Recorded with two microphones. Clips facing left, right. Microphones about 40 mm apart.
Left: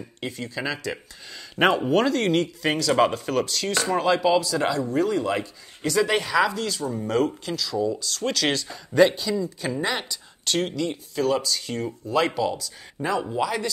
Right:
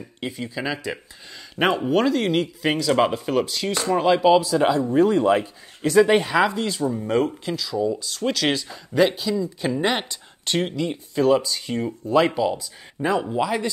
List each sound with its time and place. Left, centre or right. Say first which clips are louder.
0.2 s speech: right 2 dB; centre
9.8 s speech: right 4 dB; right